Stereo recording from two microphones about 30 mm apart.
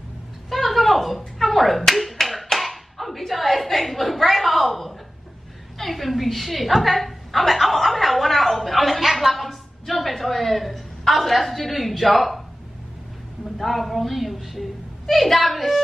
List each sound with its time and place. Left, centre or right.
0.5 s clapping: centre
5.8 s a woman's voice: centre
13.6 s a woman's voice: centre